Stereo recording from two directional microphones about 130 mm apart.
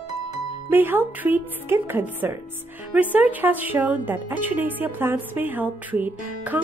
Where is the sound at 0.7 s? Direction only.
15° right (ahead or behind).